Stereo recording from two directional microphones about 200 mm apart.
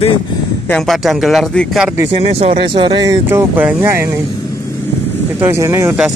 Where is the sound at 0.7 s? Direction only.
Centre (ahead or behind).